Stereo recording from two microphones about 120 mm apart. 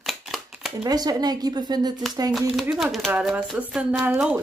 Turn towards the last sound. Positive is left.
turn(degrees=-10)  # may be behind; listen again after turning